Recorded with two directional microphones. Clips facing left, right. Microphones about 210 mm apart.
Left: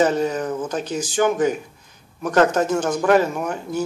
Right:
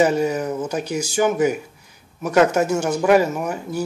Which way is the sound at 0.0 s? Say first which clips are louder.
Right 1 dB; 10° right (ahead or behind).